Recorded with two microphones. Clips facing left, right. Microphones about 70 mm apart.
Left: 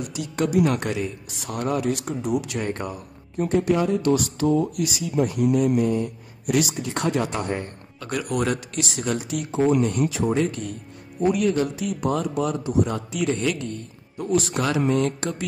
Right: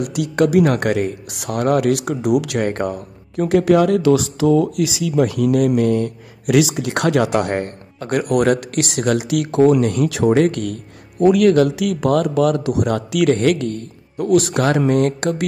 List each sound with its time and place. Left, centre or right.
0.0 s speech: right
2.7 s speech: right
3.3 s speech: right
4.5 s speech: right